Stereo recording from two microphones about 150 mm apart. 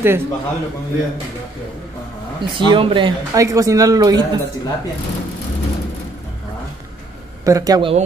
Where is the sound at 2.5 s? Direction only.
30° right (ahead or behind).